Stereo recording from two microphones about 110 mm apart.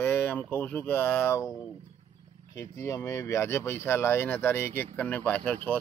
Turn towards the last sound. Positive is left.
turn(degrees=15)  # may be behind; listen again after turning